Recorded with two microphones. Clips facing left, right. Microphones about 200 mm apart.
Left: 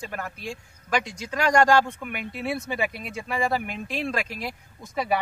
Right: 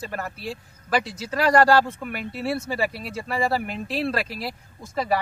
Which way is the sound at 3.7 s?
35° right (ahead or behind).